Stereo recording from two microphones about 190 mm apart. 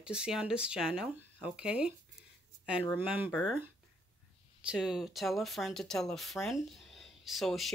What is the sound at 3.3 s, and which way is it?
Speech, 5° left (ahead or behind).